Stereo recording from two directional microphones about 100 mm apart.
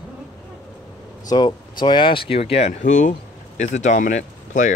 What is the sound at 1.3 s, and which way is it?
Speech, 45° left (ahead or behind).